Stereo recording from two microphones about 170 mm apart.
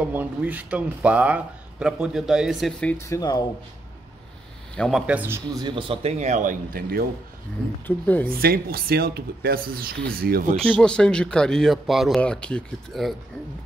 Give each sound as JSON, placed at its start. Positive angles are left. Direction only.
{"t": 0.0, "sound": "speech", "side_deg": -10}
{"t": 3.1, "sound": "speech", "side_deg": 25}
{"t": 4.7, "sound": "speech", "side_deg": 5}
{"t": 5.0, "sound": "speech", "side_deg": -10}
{"t": 7.8, "sound": "speech", "side_deg": 10}
{"t": 8.3, "sound": "speech", "side_deg": -60}
{"t": 10.6, "sound": "speech", "side_deg": 5}